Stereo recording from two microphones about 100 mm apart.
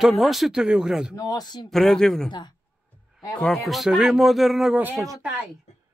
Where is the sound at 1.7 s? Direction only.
5° left (ahead or behind).